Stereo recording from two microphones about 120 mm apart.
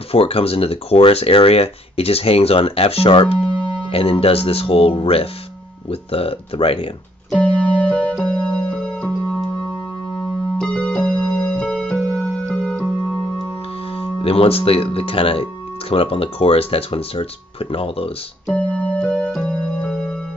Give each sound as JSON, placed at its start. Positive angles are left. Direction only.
{"t": 0.1, "sound": "speech", "side_deg": 55}
{"t": 7.2, "sound": "music", "side_deg": 10}
{"t": 10.6, "sound": "keyboard", "side_deg": 10}
{"t": 13.9, "sound": "speech", "side_deg": 55}
{"t": 18.5, "sound": "keyboard", "side_deg": 10}